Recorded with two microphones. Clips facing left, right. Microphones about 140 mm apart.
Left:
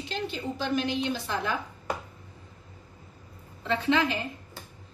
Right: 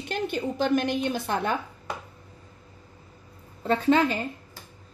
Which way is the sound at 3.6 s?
40° right (ahead or behind).